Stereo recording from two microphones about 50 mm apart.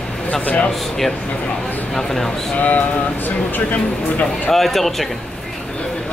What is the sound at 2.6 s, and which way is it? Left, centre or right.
Speech, left.